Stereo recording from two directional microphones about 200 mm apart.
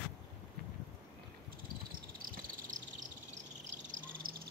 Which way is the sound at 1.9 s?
45° right (ahead or behind).